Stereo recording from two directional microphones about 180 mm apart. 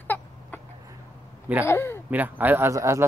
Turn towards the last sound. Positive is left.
turn(degrees=-15)  # may be behind; listen again after turning